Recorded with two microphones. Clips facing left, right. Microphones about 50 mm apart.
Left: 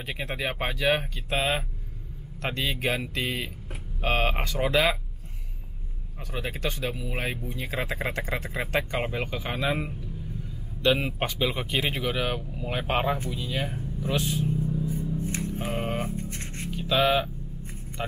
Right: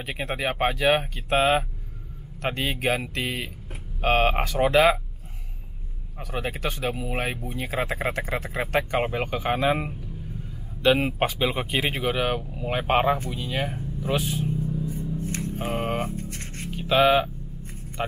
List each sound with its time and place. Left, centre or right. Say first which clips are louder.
0.0 s speech: right 3 dB; centre
6.3 s speech: right 2 dB; centre
13.6 s a sound: right 2 dB; centre
14.0 s speech: right 1 dB; centre
14.6 s music: even; centre
15.1 s music: even; centre
15.5 s a sound: right 5 dB; centre
16.3 s music: even; left
16.6 s a sound: right 4 dB; centre